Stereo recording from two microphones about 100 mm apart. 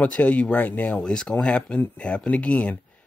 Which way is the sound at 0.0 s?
15° left (ahead or behind).